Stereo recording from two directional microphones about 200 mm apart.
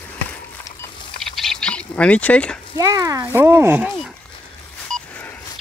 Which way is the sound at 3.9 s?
5° left (ahead or behind).